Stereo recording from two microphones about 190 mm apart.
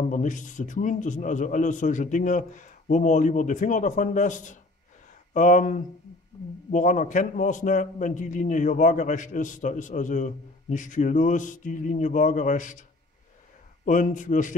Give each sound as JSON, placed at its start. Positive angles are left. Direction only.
{"t": 0.1, "sound": "a man's voice", "side_deg": 40}
{"t": 13.8, "sound": "a man's voice", "side_deg": 45}